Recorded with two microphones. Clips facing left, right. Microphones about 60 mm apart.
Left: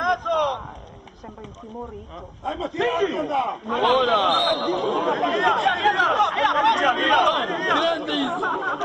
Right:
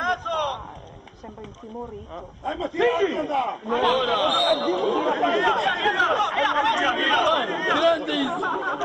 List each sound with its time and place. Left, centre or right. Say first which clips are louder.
0.0 s a sound: left 3 dB; centre
2.4 s speech: right 2 dB; centre
7.2 s speech: left 1 dB; centre
7.8 s speech: right 2 dB; right
8.4 s speech: left 1 dB; centre